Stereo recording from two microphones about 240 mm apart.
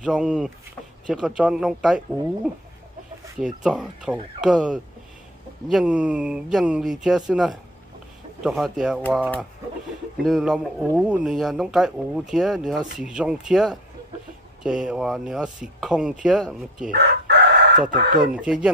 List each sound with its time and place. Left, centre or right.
0.0 s speech: centre
16.9 s chicken: right
18.2 s speech: centre